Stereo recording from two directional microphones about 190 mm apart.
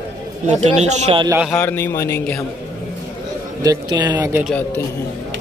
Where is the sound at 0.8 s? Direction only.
35° right (ahead or behind).